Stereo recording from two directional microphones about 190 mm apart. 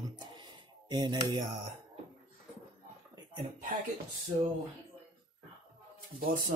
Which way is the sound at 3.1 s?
25° right (ahead or behind).